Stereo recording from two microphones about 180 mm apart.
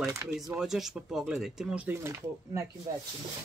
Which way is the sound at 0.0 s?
15° right (ahead or behind).